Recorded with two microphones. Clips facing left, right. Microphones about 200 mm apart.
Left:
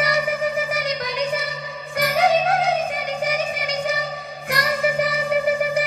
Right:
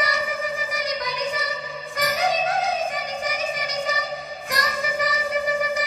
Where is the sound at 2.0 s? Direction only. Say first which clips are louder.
Left 5 dB; 65° left (ahead or behind).